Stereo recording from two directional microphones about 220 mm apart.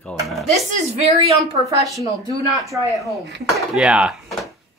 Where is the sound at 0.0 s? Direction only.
Centre (ahead or behind).